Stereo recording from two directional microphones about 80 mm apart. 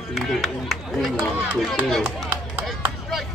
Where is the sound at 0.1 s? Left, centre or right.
Centre.